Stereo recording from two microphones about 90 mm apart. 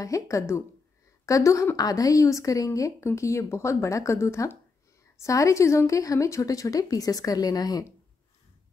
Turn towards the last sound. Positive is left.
turn(degrees=45)  # may be behind; listen again after turning